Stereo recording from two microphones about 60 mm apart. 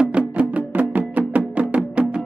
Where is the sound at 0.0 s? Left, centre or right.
Right.